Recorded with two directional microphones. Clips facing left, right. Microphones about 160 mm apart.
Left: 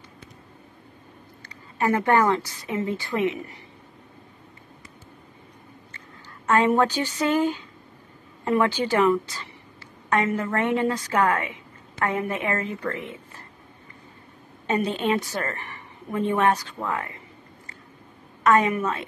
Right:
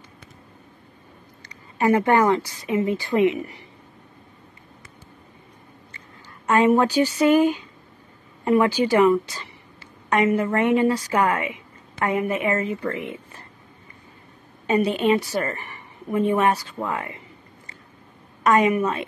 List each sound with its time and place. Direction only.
1.4 s a woman's voice: 20° right (ahead or behind)
6.4 s a woman's voice: 10° right (ahead or behind)
12.8 s speech: 20° right (ahead or behind)
14.7 s a woman's voice: 10° right (ahead or behind)
18.4 s a woman's voice: 15° right (ahead or behind)